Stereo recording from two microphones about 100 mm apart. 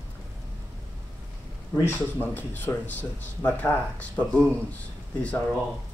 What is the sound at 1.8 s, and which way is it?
Speech, 20° left (ahead or behind).